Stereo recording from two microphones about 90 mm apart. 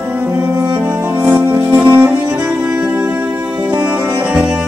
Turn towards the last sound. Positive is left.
turn(degrees=-5)  # may be behind; listen again after turning